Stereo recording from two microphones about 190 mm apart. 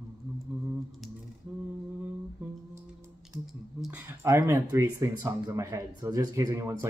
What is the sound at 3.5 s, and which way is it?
Speech, 5° right (ahead or behind).